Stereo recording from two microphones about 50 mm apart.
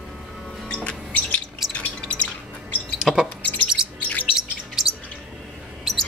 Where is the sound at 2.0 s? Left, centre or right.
Left.